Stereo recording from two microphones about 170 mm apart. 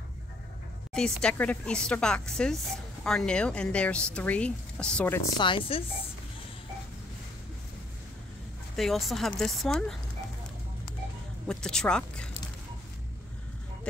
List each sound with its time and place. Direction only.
1.2 s speech: 5° left (ahead or behind)
5.4 s speech: 30° left (ahead or behind)
8.7 s speech: centre (ahead or behind)
11.4 s speech: 5° left (ahead or behind)